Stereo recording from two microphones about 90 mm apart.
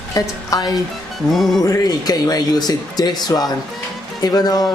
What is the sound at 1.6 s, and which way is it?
Speech, 45° left (ahead or behind).